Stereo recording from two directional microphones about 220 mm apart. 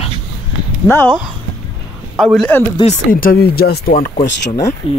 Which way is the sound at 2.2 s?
Centre (ahead or behind).